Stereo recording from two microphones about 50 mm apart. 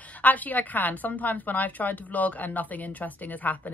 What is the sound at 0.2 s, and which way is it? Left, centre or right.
A woman's voice, left.